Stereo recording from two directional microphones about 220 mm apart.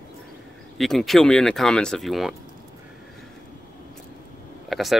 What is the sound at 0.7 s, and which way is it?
Speech, centre (ahead or behind).